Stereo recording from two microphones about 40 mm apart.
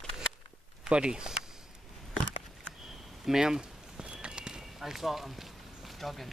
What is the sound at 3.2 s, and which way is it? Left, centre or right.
Speech, centre.